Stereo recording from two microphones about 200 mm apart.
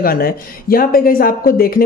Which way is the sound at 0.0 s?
45° left (ahead or behind).